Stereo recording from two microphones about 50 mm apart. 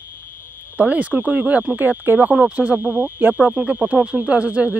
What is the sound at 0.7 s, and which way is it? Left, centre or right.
Speech, right.